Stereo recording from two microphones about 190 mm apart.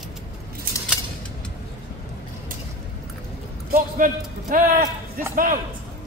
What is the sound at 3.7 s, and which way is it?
Speech, 45° right (ahead or behind).